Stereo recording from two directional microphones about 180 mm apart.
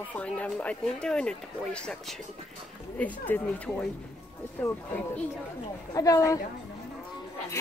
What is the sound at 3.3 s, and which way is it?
Speech, 10° left (ahead or behind).